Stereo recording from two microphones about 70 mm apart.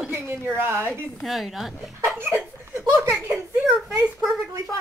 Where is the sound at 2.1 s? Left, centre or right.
Right.